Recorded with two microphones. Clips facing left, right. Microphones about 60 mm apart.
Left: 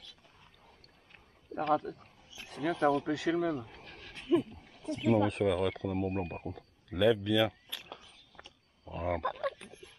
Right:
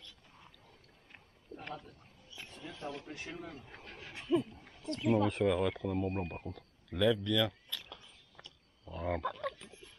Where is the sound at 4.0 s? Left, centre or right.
Centre.